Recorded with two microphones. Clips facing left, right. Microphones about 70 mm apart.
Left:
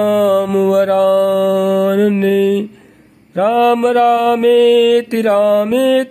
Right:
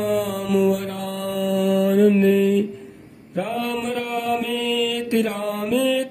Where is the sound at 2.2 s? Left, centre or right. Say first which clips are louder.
Left 4 dB; left.